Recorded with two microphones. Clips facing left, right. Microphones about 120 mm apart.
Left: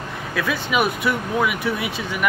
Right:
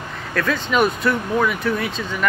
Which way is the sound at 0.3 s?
10° left (ahead or behind).